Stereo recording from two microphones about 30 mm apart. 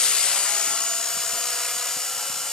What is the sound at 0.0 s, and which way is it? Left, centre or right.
Wood, left.